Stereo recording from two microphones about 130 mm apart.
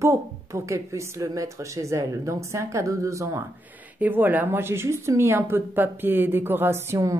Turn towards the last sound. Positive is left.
turn(degrees=-20)  # may be behind; listen again after turning